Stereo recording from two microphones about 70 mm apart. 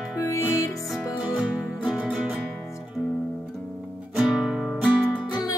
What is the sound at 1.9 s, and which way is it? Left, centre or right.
Music, centre.